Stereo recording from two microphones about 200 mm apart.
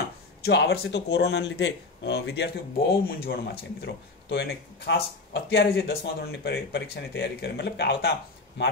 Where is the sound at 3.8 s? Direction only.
55° left (ahead or behind).